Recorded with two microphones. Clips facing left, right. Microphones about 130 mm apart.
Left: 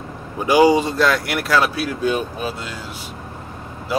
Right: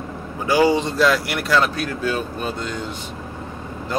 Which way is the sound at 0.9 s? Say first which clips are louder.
Even; centre (ahead or behind).